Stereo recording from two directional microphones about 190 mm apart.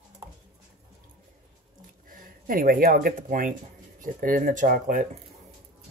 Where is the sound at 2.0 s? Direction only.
45° right (ahead or behind).